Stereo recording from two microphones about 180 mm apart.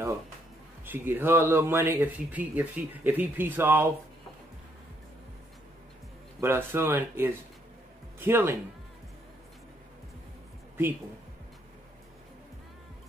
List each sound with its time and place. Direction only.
0.8 s a man's voice: 10° right (ahead or behind)
6.4 s a man's voice: 15° right (ahead or behind)